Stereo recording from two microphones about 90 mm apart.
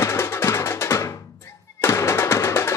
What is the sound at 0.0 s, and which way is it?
Drum, 30° left (ahead or behind).